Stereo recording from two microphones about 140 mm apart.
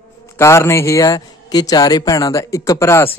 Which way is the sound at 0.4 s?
20° left (ahead or behind).